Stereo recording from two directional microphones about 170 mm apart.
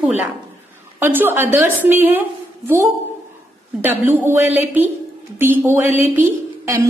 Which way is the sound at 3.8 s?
10° right (ahead or behind).